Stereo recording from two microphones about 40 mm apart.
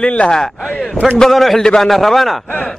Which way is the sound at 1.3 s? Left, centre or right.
Centre.